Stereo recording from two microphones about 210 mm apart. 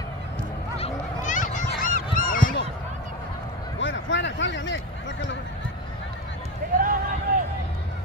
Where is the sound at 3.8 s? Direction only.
60° left (ahead or behind).